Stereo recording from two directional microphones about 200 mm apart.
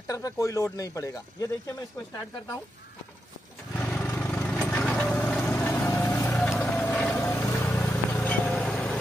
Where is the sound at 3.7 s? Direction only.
5° left (ahead or behind).